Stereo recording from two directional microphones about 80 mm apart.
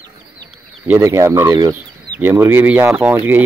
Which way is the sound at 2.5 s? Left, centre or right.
Right.